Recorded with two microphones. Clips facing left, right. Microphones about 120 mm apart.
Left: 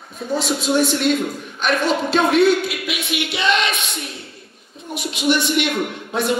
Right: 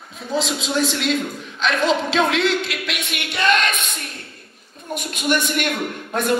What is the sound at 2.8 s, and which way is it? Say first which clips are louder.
Speech: left 4 dB; 60° right (ahead or behind).